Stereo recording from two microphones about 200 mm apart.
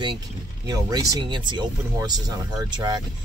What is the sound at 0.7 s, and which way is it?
Speech, 15° right (ahead or behind).